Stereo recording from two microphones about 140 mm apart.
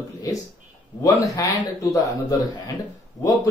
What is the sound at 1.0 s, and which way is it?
Speech, 25° left (ahead or behind).